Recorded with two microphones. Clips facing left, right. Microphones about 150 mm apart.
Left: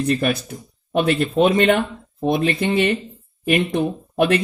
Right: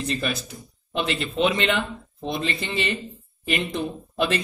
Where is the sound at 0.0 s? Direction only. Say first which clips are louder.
Left 7 dB; 55° left (ahead or behind).